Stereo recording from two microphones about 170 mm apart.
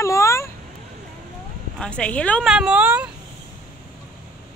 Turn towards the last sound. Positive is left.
turn(degrees=-10)  # may be behind; listen again after turning